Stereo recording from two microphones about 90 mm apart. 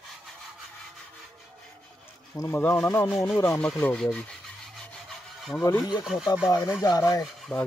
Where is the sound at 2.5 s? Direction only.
20° left (ahead or behind).